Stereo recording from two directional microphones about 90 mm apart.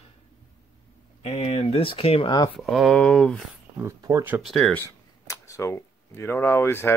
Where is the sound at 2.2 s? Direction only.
55° left (ahead or behind).